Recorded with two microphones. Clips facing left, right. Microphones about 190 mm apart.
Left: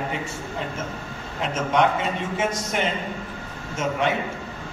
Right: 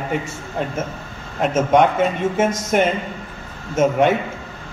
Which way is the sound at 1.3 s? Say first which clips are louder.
Right 7 dB; 50° right (ahead or behind).